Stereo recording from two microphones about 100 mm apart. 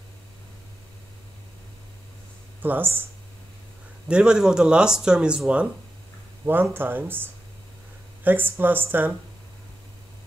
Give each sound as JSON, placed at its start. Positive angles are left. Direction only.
{"t": 2.6, "sound": "speech", "side_deg": -20}
{"t": 4.1, "sound": "speech", "side_deg": -10}
{"t": 6.4, "sound": "speech", "side_deg": -20}